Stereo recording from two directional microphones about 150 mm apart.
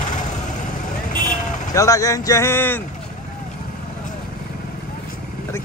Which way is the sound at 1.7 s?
20° left (ahead or behind).